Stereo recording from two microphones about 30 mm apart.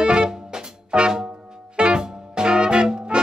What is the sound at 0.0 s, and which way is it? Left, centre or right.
Music, right.